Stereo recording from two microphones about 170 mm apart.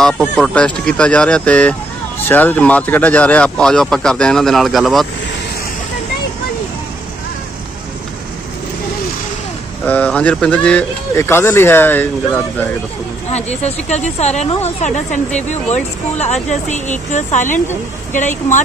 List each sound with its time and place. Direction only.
0.0 s speech: 5° left (ahead or behind)
9.8 s speech: 10° left (ahead or behind)
13.3 s speech: 40° left (ahead or behind)